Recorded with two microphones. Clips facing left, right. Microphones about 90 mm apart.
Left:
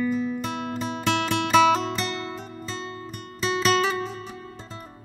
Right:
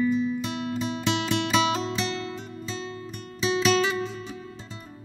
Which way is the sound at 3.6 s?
45° left (ahead or behind).